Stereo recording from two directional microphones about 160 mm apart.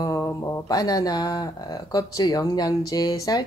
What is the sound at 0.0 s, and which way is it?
A woman's voice, 20° left (ahead or behind).